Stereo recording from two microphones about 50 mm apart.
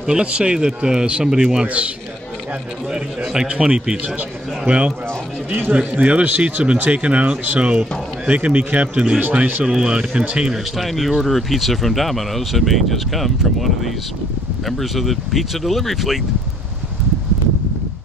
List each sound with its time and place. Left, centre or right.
0.0 s a man's voice: centre
2.9 s a man's voice: centre
5.5 s speech: right
5.8 s speech: right
9.7 s a man's voice: centre
10.5 s speech: centre